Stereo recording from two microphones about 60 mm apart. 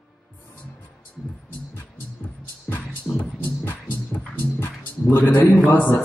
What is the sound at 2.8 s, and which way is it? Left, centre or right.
Music, centre.